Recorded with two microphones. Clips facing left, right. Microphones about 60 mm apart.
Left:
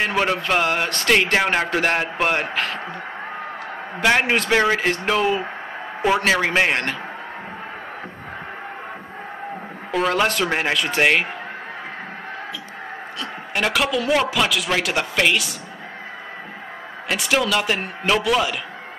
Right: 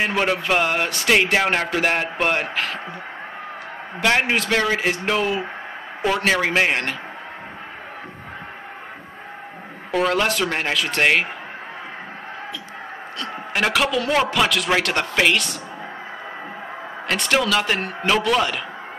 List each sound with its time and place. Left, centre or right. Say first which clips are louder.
0.1 s a man's voice: even; centre
4.0 s a man's voice: left 1 dB; centre
4.5 s speech: left 3 dB; centre
4.7 s a man's voice: left 1 dB; centre
9.8 s a man's voice: even; centre
13.2 s a man's voice: right 1 dB; centre
17.1 s a man's voice: right 1 dB; centre